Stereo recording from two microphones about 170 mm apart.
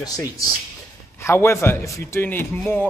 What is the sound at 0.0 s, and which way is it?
Speech, 20° left (ahead or behind).